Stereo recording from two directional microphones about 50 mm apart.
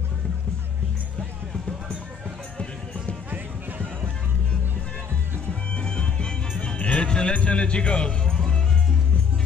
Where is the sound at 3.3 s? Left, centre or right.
Right.